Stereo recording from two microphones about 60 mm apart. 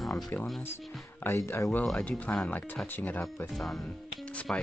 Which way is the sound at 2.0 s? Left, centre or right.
Left.